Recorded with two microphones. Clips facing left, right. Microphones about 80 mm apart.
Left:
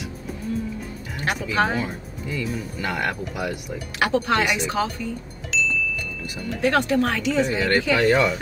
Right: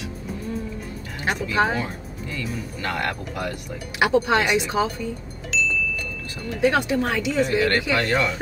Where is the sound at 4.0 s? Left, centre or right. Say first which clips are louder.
Right 2 dB; centre.